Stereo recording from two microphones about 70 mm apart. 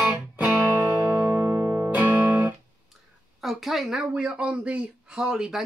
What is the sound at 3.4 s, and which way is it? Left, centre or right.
Speech, centre.